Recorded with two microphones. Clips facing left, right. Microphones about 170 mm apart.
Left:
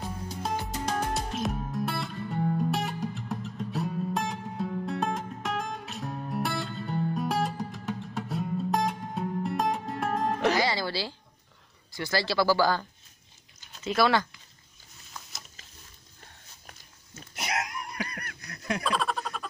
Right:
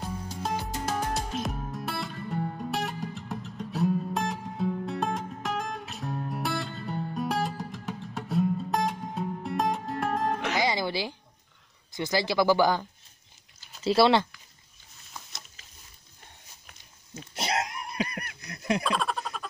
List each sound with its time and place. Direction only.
0.0 s music: centre (ahead or behind)
10.6 s music: 20° right (ahead or behind)
11.9 s speech: 20° right (ahead or behind)
13.8 s speech: 30° right (ahead or behind)
17.4 s a sound: 30° right (ahead or behind)
18.9 s a sound: centre (ahead or behind)